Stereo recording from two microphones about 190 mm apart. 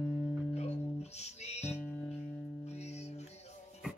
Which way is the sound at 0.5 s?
35° left (ahead or behind).